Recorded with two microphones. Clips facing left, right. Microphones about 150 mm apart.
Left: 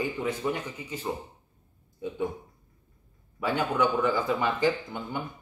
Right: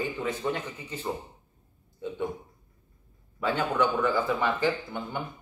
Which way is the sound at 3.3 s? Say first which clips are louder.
Even; 10° left (ahead or behind).